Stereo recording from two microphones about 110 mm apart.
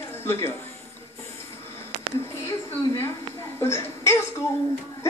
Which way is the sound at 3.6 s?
25° left (ahead or behind).